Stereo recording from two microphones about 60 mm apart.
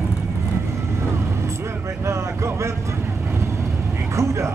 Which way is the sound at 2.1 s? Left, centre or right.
Right.